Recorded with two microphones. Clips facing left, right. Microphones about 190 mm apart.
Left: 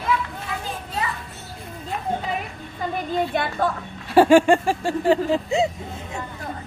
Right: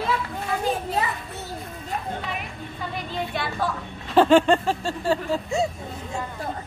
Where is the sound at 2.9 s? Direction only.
50° left (ahead or behind).